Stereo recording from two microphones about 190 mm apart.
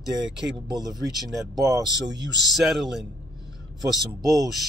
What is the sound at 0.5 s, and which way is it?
Speech, 20° right (ahead or behind).